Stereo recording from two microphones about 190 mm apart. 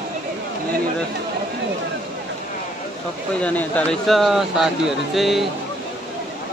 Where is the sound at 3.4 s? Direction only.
5° left (ahead or behind).